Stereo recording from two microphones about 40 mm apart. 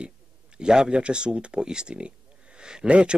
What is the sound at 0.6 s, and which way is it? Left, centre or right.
Speech, centre.